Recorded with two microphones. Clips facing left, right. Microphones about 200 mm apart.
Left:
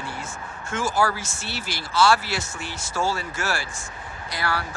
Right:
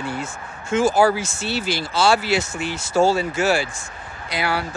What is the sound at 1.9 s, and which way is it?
Speech, 25° right (ahead or behind).